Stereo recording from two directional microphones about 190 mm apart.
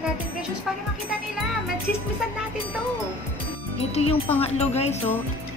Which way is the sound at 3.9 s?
35° left (ahead or behind).